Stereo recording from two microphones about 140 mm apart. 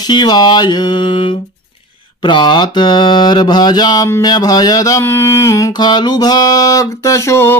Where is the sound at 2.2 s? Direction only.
35° left (ahead or behind).